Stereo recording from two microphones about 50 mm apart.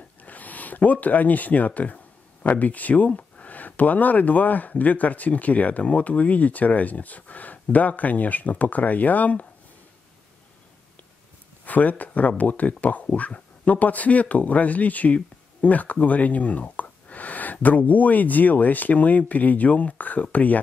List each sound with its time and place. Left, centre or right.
0.2 s a sound: left
1.0 s speech: left
11.6 s speech: left